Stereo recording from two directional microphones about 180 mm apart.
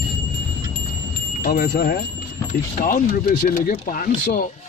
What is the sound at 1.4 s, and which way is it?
Speech, 60° left (ahead or behind).